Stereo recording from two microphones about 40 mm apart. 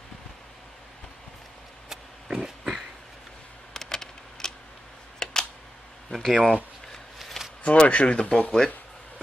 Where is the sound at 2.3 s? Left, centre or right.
Centre.